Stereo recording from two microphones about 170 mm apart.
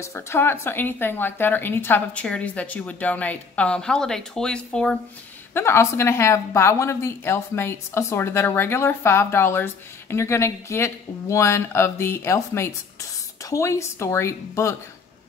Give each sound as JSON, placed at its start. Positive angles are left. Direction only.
{"t": 0.0, "sound": "speech", "side_deg": 15}